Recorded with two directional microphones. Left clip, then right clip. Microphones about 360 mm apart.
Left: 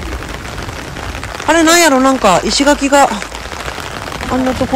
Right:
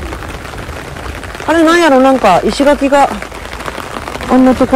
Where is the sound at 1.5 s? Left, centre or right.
Centre.